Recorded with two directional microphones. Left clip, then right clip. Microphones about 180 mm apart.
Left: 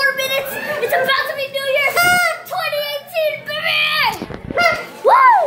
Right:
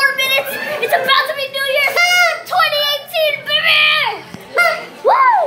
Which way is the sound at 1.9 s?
25° left (ahead or behind).